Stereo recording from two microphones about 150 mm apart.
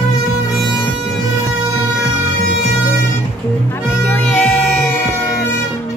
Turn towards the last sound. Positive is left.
turn(degrees=5)  # may be behind; listen again after turning